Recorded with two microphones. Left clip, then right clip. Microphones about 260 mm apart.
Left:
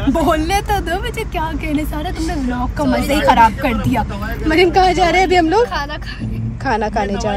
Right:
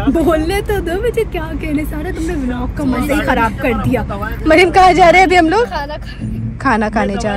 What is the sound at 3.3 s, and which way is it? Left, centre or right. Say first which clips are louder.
Speech: left 6 dB; left.